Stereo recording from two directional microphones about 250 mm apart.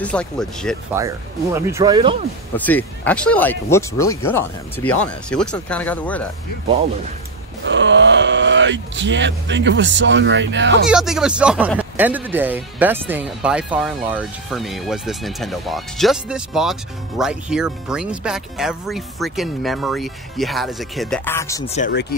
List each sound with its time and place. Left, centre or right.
0.0 s speech: centre
0.9 s speech: centre
2.5 s speech: centre
7.6 s speech: right
10.9 s speech: centre
21.6 s speech: left